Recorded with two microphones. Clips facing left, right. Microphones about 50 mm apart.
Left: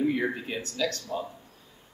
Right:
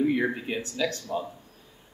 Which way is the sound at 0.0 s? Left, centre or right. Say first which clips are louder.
Right 2 dB; centre.